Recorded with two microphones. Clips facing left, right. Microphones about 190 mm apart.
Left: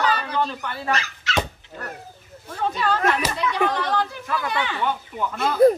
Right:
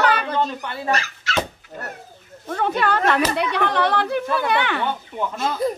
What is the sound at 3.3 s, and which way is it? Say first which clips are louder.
Speech: right 1 dB; 65° right (ahead or behind).